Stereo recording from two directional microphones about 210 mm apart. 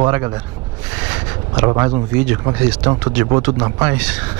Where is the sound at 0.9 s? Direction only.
10° right (ahead or behind).